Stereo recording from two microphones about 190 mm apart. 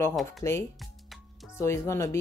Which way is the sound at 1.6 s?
15° left (ahead or behind).